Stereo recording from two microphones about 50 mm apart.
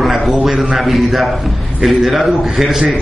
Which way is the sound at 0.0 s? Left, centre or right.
Centre.